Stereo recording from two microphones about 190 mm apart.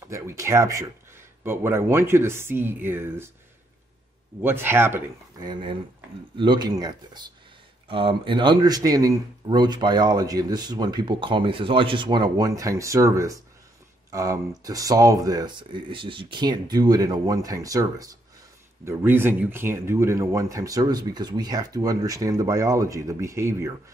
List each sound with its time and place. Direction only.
0.1 s speech: 15° right (ahead or behind)
4.4 s a man's voice: 10° right (ahead or behind)